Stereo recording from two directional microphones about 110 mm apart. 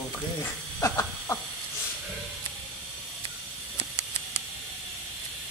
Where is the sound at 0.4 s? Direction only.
25° left (ahead or behind).